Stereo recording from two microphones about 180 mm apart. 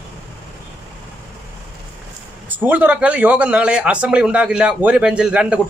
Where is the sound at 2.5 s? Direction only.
10° right (ahead or behind).